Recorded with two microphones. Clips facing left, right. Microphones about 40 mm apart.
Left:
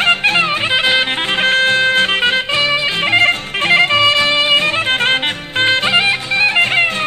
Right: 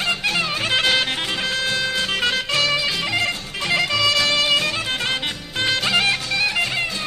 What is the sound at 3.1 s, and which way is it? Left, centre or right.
Music, left.